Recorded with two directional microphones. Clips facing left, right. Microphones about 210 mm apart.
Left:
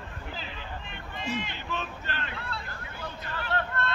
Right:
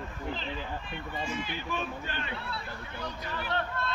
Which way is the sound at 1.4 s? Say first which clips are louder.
Right 1 dB; 10° right (ahead or behind).